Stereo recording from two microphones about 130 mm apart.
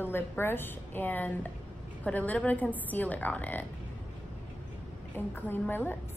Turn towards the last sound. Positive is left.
turn(degrees=15)  # may be behind; listen again after turning